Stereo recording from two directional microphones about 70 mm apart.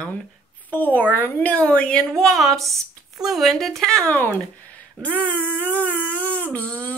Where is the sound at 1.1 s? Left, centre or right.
Left.